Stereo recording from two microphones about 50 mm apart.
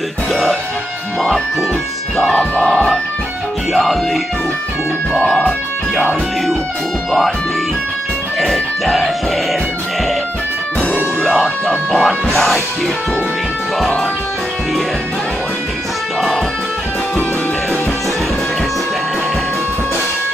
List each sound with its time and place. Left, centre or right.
0.3 s music: centre
2.3 s music: centre
3.7 s music: centre
5.2 s music: centre
7.1 s music: centre
8.4 s music: centre
11.6 s music: centre